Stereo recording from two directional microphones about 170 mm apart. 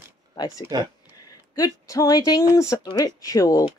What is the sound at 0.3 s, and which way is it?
Speech, 20° left (ahead or behind).